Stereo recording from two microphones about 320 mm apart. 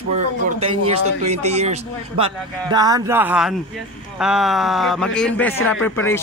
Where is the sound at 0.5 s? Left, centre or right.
Centre.